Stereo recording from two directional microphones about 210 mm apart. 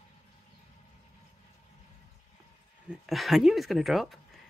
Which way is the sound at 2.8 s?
Centre (ahead or behind).